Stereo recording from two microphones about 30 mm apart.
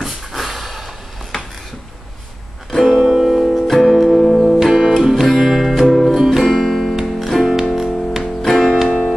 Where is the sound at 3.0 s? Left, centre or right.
Centre.